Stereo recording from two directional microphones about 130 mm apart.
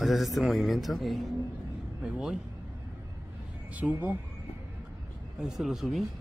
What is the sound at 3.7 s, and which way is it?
Speech, 10° right (ahead or behind).